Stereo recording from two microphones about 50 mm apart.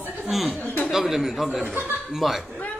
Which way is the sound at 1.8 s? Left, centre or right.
Right.